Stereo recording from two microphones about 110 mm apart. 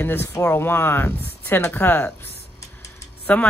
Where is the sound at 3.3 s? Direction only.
15° left (ahead or behind).